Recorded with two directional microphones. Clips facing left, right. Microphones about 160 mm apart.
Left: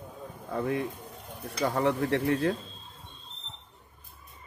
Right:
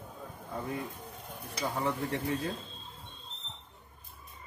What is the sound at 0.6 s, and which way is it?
Speech, 75° left (ahead or behind).